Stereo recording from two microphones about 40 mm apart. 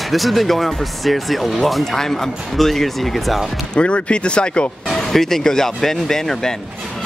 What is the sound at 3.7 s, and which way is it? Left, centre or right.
Speech, left.